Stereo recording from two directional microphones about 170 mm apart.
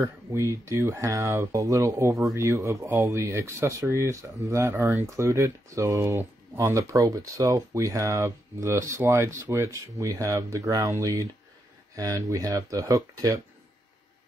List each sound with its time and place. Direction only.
0.0 s speech: 15° right (ahead or behind)